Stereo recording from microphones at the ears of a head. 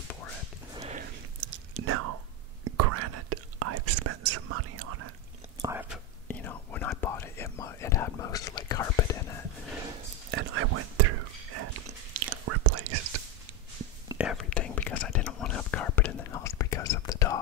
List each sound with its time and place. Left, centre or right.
0.9 s whispering: right
6.2 s whispering: left
10.3 s whispering: right
14.2 s whispering: left